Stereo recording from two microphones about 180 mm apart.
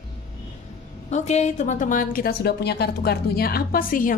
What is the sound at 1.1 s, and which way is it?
A woman's voice, 40° left (ahead or behind).